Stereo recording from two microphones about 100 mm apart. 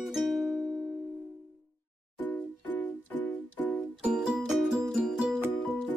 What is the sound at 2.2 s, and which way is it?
Music, 20° left (ahead or behind).